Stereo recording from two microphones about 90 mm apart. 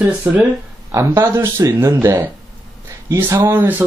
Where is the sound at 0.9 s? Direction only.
30° right (ahead or behind).